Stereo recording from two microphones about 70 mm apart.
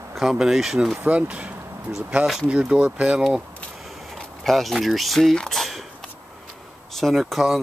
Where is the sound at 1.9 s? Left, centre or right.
Centre.